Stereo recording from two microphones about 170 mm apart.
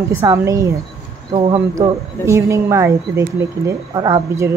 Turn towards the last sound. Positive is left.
turn(degrees=-25)  # may be behind; listen again after turning